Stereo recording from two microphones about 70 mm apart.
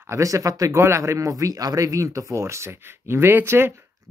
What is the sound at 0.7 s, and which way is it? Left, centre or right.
Speech, right.